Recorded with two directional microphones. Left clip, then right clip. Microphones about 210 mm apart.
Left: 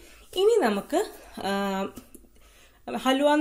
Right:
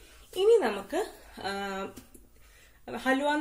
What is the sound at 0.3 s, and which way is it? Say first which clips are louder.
A woman's voice: left 2 dB; 45° left (ahead or behind).